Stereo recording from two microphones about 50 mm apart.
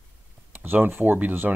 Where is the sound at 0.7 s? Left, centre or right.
Right.